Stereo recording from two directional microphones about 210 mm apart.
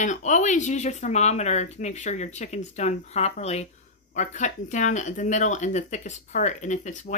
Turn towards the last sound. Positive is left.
turn(degrees=35)  # may be behind; listen again after turning